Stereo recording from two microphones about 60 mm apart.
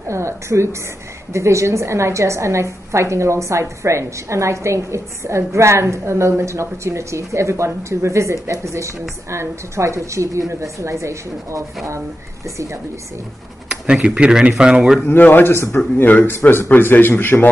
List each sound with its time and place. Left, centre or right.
0.1 s a woman's voice: right
13.7 s speech: centre
15.0 s speech: left
16.0 s speech: left
16.3 s speech: left